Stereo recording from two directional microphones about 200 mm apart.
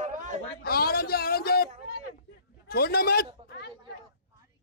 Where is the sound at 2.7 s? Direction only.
50° left (ahead or behind).